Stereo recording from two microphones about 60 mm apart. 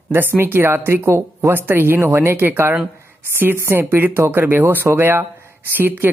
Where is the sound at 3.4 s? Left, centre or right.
Right.